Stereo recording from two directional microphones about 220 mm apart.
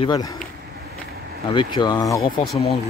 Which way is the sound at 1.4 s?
20° left (ahead or behind).